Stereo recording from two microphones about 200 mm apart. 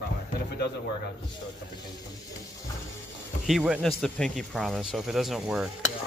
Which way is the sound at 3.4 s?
5° right (ahead or behind).